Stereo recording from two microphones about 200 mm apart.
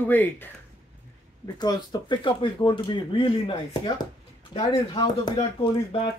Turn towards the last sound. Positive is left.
turn(degrees=25)  # may be behind; listen again after turning